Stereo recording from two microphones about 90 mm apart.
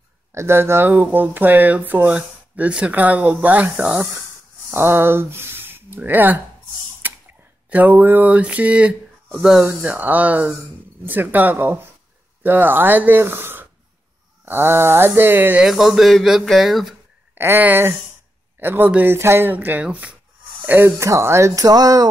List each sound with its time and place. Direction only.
0.3 s speech: 30° right (ahead or behind)
7.0 s a sound: 20° right (ahead or behind)
7.7 s speech: 20° right (ahead or behind)
9.7 s speech: 20° right (ahead or behind)
15.6 s speech: 5° right (ahead or behind)
17.4 s speech: 25° right (ahead or behind)
19.1 s speech: 30° right (ahead or behind); by 22.0 s 45° right (ahead or behind)